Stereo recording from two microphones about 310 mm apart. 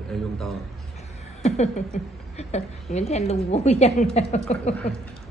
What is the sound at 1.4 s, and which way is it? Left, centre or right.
Chuckle, left.